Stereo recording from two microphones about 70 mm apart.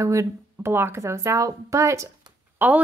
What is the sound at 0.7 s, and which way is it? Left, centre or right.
Speech, right.